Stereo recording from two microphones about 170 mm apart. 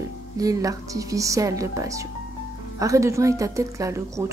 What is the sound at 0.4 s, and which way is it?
A woman's voice, 20° right (ahead or behind).